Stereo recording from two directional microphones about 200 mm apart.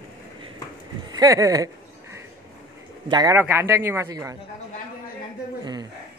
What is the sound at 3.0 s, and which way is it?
A man's voice, 20° right (ahead or behind).